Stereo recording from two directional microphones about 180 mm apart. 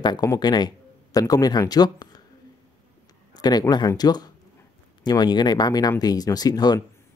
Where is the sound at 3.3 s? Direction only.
20° left (ahead or behind).